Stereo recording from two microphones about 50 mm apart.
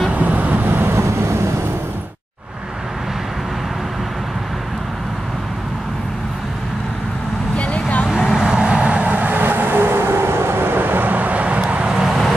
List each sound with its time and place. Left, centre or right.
0.1 s vehicle: right
0.7 s vehicle: right
1.0 s vehicle: right
7.5 s vehicle: left
8.1 s vehicle: centre; by 12.0 s right
12.0 s vehicle: centre